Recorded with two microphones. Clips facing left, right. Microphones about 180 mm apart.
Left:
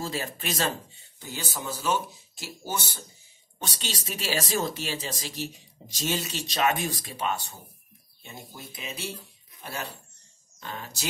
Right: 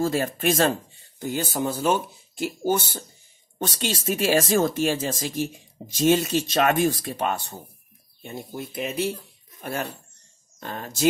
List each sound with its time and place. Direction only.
0.0 s speech: 50° right (ahead or behind)